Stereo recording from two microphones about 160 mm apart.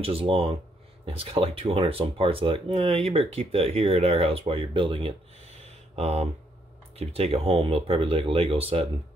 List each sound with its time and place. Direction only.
0.0 s speech: 35° right (ahead or behind)